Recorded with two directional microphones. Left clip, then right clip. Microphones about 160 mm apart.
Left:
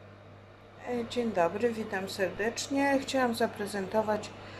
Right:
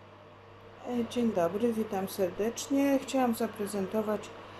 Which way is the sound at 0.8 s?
15° right (ahead or behind).